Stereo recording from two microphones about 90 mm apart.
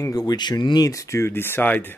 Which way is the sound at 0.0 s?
45° left (ahead or behind).